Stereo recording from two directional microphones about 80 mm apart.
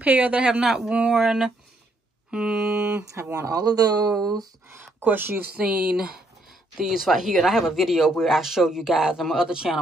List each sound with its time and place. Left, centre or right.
0.0 s speech: centre
3.3 s speech: right
5.0 s speech: right
5.6 s a man's voice: centre